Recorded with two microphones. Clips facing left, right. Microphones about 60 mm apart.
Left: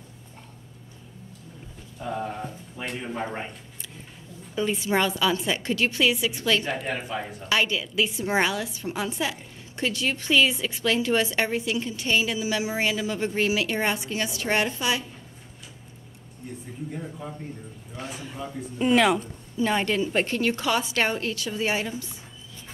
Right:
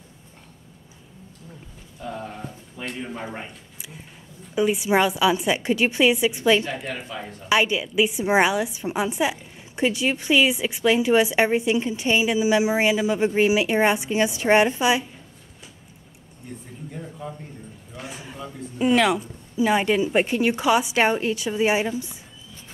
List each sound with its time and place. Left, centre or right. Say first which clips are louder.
2.0 s speech: left 2 dB; centre
4.6 s a woman's voice: right 4 dB; centre
6.9 s speech: left 2 dB; centre
7.4 s a woman's voice: right 5 dB; centre
16.9 s a sound: right 3 dB; centre
18.0 s a woman's voice: left 1 dB; centre
19.5 s a woman's voice: right 4 dB; centre